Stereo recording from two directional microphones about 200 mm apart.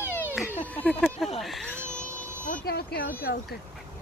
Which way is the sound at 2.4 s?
45° left (ahead or behind).